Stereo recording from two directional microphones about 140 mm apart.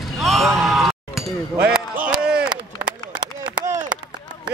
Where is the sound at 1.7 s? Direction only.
5° right (ahead or behind).